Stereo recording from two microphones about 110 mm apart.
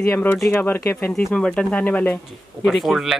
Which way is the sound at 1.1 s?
5° left (ahead or behind).